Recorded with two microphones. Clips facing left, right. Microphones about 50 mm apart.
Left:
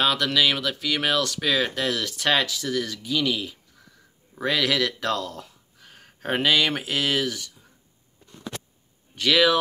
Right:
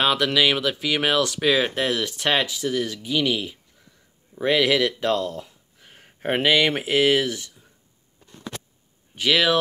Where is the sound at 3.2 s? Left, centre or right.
Right.